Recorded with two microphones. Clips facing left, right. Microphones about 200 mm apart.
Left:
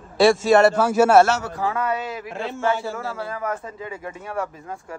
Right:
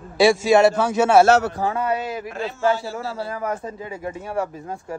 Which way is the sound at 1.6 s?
30° right (ahead or behind).